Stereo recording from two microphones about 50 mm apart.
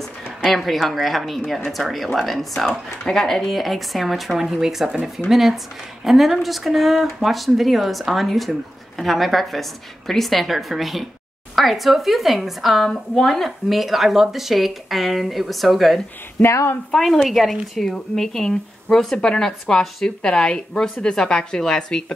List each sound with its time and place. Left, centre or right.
0.4 s speech: centre
12.8 s speech: centre
16.4 s speech: left
17.0 s a woman's voice: centre